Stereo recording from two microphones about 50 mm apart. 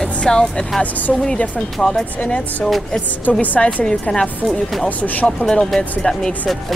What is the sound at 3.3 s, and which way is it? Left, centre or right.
Speech, left.